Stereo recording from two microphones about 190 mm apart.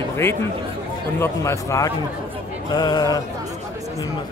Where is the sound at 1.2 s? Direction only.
15° left (ahead or behind).